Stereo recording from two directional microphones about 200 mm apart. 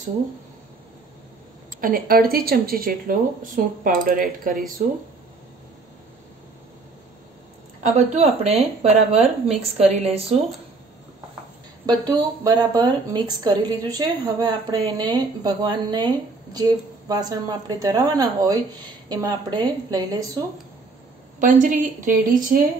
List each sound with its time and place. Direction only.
1.8 s speech: 45° right (ahead or behind)
7.8 s speech: 30° right (ahead or behind)
11.8 s speech: 20° right (ahead or behind)
17.1 s speech: 20° right (ahead or behind)
21.4 s speech: 40° right (ahead or behind)